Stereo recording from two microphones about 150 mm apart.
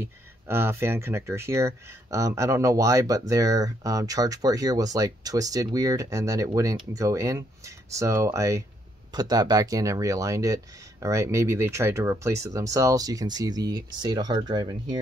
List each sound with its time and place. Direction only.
0.0 s speech: 15° right (ahead or behind)